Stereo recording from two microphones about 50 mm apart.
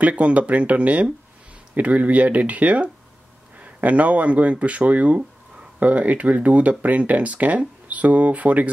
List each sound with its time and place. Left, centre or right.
0.0 s speech: right